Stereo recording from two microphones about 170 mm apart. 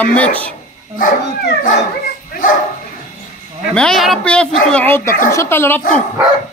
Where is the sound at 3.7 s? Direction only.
5° left (ahead or behind).